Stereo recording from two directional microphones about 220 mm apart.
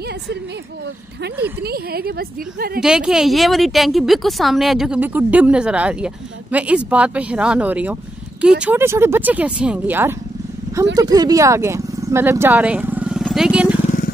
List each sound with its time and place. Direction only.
1.6 s a woman's voice: 45° right (ahead or behind)
2.8 s speech: 5° right (ahead or behind)